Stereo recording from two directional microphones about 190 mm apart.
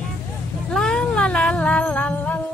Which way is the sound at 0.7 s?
Centre (ahead or behind).